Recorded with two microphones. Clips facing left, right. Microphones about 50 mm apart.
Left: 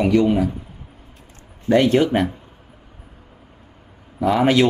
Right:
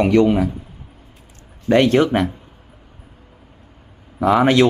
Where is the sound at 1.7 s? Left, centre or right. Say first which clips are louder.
Right 1 dB; right.